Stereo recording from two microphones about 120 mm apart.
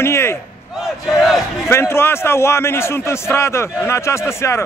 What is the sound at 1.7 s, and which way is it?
A man's voice, 20° left (ahead or behind).